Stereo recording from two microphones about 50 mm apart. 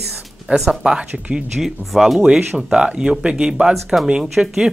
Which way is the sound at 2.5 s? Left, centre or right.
Centre.